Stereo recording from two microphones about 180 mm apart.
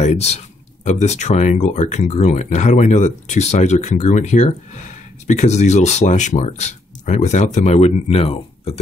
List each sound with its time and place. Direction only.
0.0 s speech: 40° left (ahead or behind)